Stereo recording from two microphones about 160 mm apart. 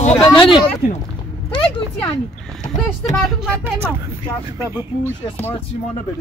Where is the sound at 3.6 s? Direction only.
15° right (ahead or behind).